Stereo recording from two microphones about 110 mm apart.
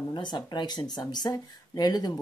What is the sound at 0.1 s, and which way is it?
Speech, 45° left (ahead or behind).